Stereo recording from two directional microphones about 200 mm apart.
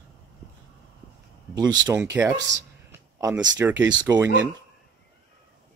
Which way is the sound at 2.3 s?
60° right (ahead or behind).